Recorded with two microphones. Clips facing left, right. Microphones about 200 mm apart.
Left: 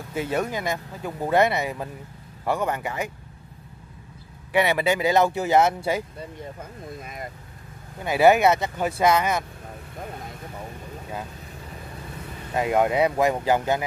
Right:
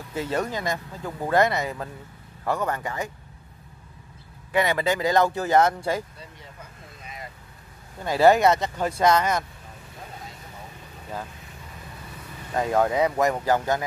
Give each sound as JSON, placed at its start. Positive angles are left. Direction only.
{"t": 0.1, "sound": "speech", "side_deg": 10}
{"t": 4.5, "sound": "speech", "side_deg": 15}
{"t": 6.6, "sound": "a sound", "side_deg": 50}
{"t": 8.0, "sound": "speech", "side_deg": 10}
{"t": 12.5, "sound": "speech", "side_deg": 15}